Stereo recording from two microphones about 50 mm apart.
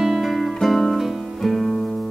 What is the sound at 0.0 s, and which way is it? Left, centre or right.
Music, centre.